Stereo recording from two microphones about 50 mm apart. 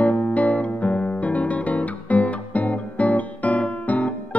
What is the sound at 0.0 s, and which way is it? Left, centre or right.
Music, left.